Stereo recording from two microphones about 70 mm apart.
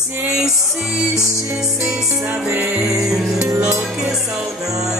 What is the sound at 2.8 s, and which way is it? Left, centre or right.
Music, right.